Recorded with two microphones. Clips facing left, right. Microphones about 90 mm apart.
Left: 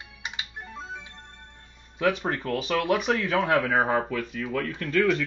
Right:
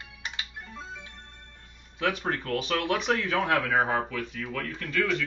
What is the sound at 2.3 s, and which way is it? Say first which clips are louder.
Speech: left 2 dB; 10° left (ahead or behind).